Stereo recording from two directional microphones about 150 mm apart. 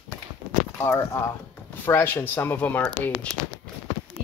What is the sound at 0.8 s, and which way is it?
Speech, 20° left (ahead or behind).